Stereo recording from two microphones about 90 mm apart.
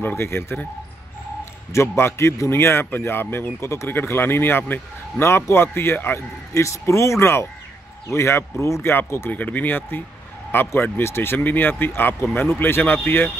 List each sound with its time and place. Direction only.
0.0 s a man's voice: 25° left (ahead or behind)
1.7 s a man's voice: 30° left (ahead or behind)
5.2 s a man's voice: 30° left (ahead or behind)